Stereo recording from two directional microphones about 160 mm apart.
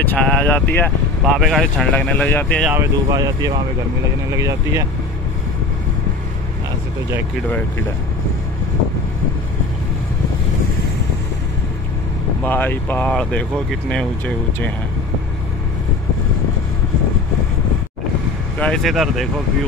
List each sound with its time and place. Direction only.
0.0 s speech: 10° left (ahead or behind)
1.2 s speech: centre (ahead or behind)
2.7 s speech: 20° right (ahead or behind)
12.4 s speech: 10° left (ahead or behind)
18.6 s speech: 5° left (ahead or behind)